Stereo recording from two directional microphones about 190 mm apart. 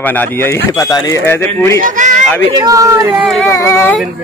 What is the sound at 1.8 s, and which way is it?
Speech, 40° right (ahead or behind).